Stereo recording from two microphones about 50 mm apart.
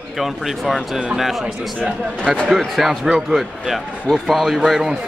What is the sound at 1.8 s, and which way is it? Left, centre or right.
Speech, centre.